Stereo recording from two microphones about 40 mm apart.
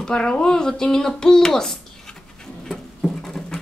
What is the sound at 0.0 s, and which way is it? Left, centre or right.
Speech, left.